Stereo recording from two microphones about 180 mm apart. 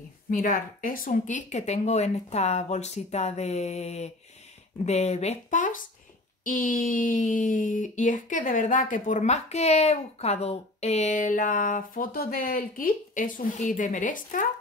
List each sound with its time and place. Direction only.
0.3 s speech: 45° left (ahead or behind)